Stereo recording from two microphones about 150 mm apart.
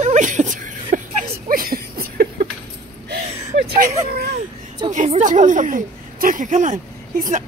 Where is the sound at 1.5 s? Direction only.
75° right (ahead or behind).